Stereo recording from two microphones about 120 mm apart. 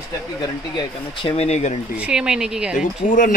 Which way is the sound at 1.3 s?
65° left (ahead or behind).